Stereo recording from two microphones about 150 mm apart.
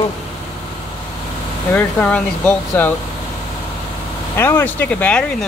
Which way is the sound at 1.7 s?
10° left (ahead or behind).